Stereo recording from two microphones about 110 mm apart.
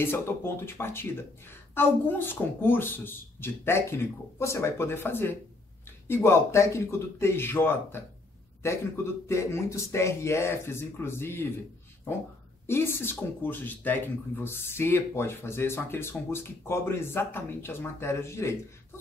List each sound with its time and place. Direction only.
0.0 s speech: 20° left (ahead or behind)
12.6 s speech: 20° left (ahead or behind)